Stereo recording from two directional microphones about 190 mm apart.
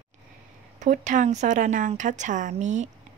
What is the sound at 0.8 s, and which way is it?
A woman's voice, 40° right (ahead or behind).